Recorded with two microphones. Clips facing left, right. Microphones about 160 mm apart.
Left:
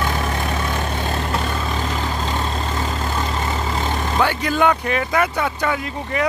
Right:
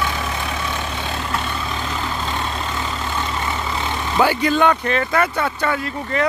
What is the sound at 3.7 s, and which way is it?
Vehicle, 45° left (ahead or behind).